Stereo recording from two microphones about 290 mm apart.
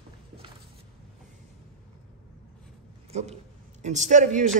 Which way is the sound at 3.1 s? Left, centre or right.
Right.